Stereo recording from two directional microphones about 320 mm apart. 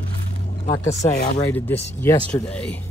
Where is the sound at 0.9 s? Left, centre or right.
Left.